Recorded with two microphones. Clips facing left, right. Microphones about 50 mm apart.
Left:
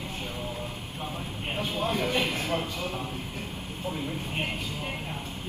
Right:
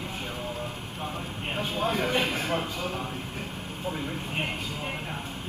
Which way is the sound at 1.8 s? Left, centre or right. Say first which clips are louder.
Right 1 dB; right.